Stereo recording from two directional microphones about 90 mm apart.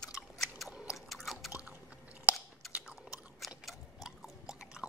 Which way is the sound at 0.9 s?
Centre (ahead or behind).